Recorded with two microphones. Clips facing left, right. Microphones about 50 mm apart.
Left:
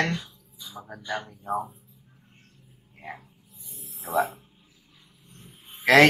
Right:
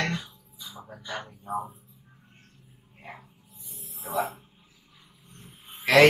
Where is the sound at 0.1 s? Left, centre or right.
Centre.